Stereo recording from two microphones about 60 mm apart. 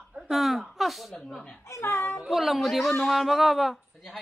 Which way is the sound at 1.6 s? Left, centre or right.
Left.